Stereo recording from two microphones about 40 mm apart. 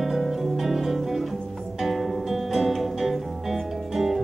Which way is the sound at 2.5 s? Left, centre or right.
Centre.